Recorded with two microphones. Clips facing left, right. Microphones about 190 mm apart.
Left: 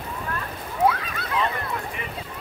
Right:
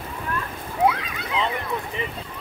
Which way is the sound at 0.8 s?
15° right (ahead or behind).